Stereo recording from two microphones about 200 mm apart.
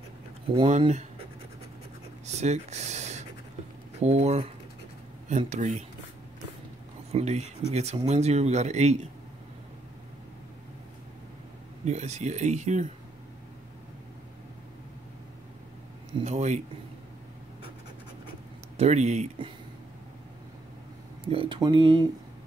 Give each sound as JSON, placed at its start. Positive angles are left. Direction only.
{"t": 0.7, "sound": "speech", "side_deg": -35}
{"t": 2.2, "sound": "speech", "side_deg": -35}
{"t": 7.1, "sound": "speech", "side_deg": -30}
{"t": 11.8, "sound": "speech", "side_deg": -35}
{"t": 16.2, "sound": "speech", "side_deg": -35}
{"t": 18.8, "sound": "speech", "side_deg": -35}
{"t": 21.3, "sound": "speech", "side_deg": -25}